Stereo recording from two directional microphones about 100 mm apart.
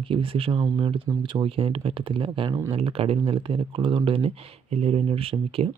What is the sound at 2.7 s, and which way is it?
Speech, 70° right (ahead or behind).